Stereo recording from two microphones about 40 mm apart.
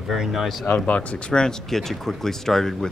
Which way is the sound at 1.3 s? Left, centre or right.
Left.